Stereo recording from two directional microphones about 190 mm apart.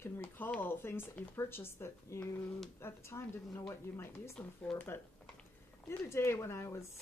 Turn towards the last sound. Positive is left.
turn(degrees=15)  # may be behind; listen again after turning